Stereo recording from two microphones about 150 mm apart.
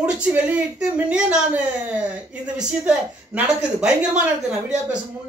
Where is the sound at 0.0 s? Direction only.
5° right (ahead or behind).